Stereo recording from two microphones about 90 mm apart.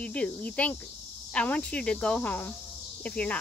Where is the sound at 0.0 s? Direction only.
15° left (ahead or behind).